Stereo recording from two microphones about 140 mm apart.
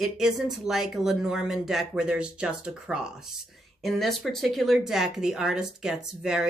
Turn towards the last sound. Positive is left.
turn(degrees=-5)  # may be behind; listen again after turning